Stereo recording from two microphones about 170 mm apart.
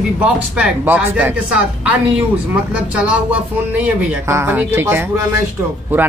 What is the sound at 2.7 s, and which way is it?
Speech, 5° right (ahead or behind).